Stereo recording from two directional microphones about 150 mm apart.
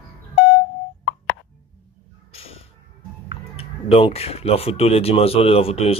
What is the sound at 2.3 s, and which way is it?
Music, 40° left (ahead or behind).